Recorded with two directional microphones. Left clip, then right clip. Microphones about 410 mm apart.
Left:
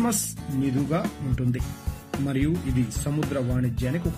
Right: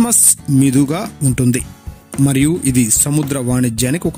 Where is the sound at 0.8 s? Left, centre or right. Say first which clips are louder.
Right 8 dB; right.